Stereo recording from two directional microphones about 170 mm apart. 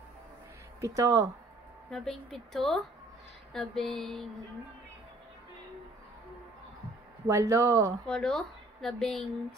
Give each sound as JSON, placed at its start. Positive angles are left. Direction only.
{"t": 0.7, "sound": "speech", "side_deg": -20}
{"t": 1.9, "sound": "speech", "side_deg": 0}
{"t": 7.2, "sound": "speech", "side_deg": -20}
{"t": 8.1, "sound": "speech", "side_deg": 5}